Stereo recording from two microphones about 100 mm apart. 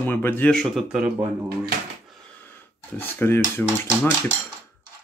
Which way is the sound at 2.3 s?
20° left (ahead or behind).